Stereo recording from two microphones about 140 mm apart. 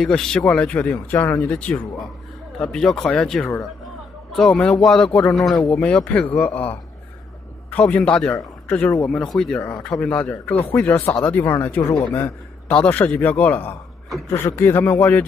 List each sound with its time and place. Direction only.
0.0 s a man's voice: 5° left (ahead or behind)